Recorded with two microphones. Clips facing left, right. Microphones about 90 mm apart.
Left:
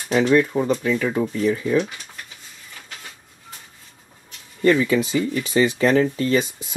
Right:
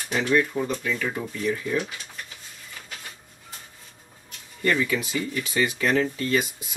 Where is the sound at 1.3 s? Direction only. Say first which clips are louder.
Left 6 dB; 40° left (ahead or behind).